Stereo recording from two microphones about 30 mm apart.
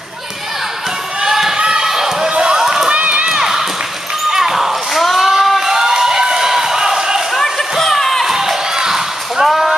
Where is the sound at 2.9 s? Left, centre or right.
Right.